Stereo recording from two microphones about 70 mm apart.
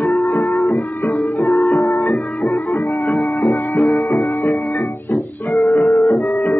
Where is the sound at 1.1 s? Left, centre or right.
Left.